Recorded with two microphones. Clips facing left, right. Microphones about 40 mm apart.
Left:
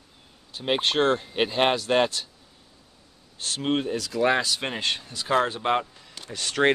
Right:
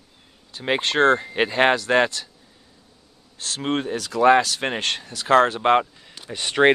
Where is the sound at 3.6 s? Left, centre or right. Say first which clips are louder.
Right 1 dB; right.